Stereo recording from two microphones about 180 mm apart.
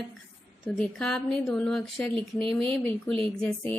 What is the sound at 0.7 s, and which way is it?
Speech, 5° left (ahead or behind).